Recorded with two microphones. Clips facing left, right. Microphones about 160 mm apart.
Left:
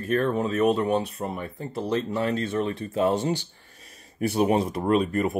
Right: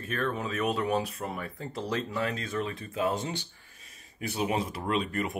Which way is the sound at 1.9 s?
35° left (ahead or behind).